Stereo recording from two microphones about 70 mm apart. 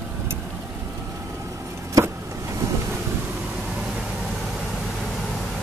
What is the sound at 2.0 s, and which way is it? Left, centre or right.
Vehicle, right.